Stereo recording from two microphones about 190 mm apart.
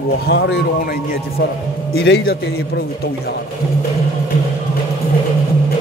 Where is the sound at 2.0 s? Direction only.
60° left (ahead or behind).